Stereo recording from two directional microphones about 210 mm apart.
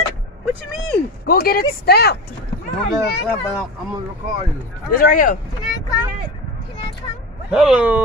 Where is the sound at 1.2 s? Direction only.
45° left (ahead or behind).